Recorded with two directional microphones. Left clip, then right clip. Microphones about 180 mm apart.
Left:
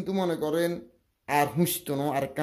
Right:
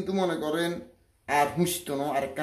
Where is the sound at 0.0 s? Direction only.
50° left (ahead or behind).